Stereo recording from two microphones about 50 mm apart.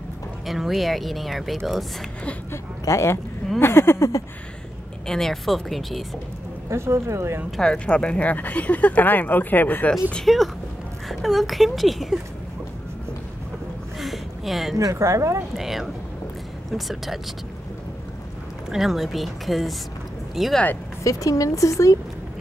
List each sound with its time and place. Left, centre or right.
0.5 s speech: centre
2.5 s speech: left
3.5 s speech: left
5.0 s speech: centre
6.7 s speech: right
7.6 s speech: left
10.2 s speech: centre
13.9 s a sound: centre
15.0 s speech: right
15.5 s speech: centre
18.7 s speech: centre
21.0 s speech: left